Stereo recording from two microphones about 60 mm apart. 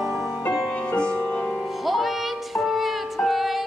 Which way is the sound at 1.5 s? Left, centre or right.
Centre.